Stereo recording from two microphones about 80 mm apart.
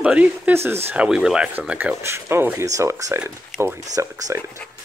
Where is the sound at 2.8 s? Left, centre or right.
Right.